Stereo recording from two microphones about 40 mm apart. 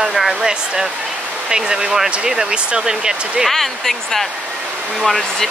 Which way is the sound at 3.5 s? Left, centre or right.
Centre.